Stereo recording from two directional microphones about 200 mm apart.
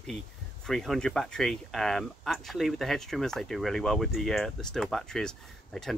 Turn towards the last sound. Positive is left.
turn(degrees=0)  # may be behind; listen again after turning